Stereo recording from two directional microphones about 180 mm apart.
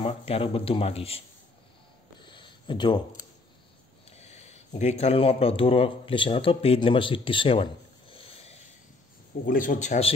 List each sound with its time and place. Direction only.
0.0 s speech: 35° left (ahead or behind)
2.2 s a sound: 25° left (ahead or behind)
4.1 s speech: 35° left (ahead or behind)
9.5 s speech: 45° left (ahead or behind)